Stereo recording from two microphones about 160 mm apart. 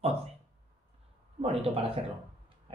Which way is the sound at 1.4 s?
35° right (ahead or behind).